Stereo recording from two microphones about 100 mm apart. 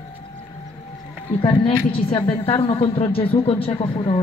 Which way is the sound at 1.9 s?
65° left (ahead or behind).